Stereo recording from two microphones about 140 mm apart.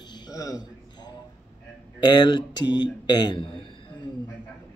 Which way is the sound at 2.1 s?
30° left (ahead or behind).